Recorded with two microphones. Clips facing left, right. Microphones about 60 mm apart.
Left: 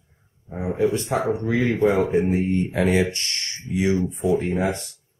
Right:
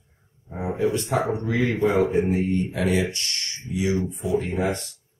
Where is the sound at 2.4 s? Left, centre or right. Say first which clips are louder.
Left 2 dB; left.